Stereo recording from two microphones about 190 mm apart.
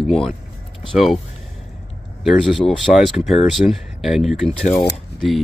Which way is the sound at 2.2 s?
Centre (ahead or behind).